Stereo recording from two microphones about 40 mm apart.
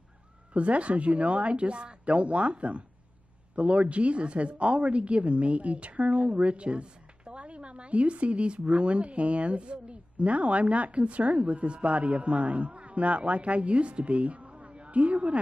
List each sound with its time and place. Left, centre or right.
0.5 s a woman's voice: right